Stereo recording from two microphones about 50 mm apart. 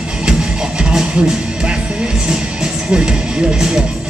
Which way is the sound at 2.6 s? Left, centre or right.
Centre.